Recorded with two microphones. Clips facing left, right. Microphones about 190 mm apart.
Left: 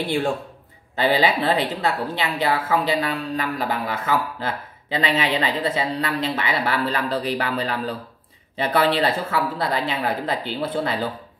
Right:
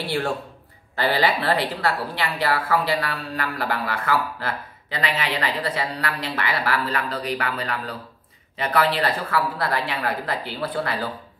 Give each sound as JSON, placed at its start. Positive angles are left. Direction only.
{"t": 0.0, "sound": "a man's voice", "side_deg": 20}